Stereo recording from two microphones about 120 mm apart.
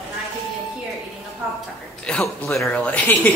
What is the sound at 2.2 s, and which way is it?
Speech, 25° left (ahead or behind).